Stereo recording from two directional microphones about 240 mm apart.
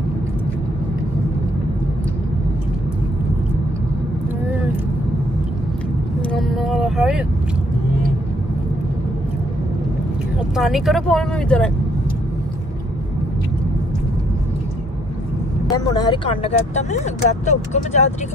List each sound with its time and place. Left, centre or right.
6.3 s vehicle: centre
10.5 s speech: centre
15.7 s speech: centre